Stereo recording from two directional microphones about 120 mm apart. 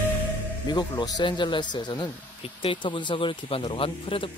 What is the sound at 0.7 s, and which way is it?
Speech, 35° left (ahead or behind).